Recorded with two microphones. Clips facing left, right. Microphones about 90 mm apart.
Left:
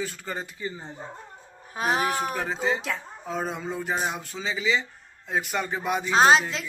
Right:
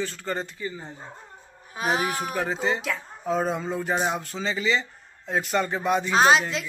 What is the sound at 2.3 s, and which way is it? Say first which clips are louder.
Speech: right 1 dB; centre (ahead or behind).